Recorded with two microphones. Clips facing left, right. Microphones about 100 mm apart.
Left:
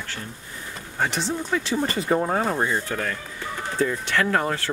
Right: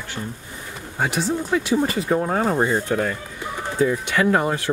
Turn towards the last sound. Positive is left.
turn(degrees=-10)  # may be behind; listen again after turning